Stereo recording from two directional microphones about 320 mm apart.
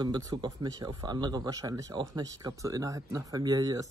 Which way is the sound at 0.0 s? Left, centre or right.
Centre.